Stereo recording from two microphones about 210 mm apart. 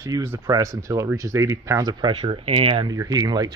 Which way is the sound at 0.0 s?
15° right (ahead or behind).